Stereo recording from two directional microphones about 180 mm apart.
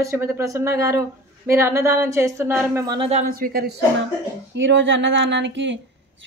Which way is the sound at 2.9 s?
35° right (ahead or behind).